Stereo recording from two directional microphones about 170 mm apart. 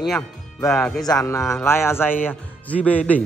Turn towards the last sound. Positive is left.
turn(degrees=10)  # may be behind; listen again after turning